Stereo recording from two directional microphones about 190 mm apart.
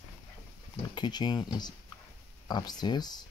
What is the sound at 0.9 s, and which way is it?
Speech, 25° left (ahead or behind).